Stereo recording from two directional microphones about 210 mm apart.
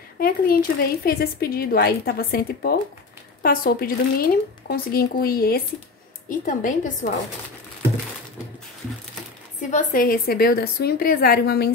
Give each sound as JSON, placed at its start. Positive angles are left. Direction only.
{"t": 0.2, "sound": "a woman's voice", "side_deg": 45}
{"t": 9.6, "sound": "speech", "side_deg": 35}